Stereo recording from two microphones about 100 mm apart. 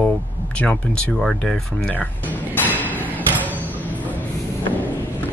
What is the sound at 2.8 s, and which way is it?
Hammer, 15° left (ahead or behind).